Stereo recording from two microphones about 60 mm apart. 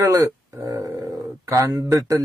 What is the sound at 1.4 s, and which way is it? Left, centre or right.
Speech, right.